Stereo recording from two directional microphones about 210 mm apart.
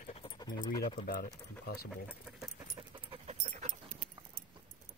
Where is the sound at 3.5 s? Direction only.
35° right (ahead or behind).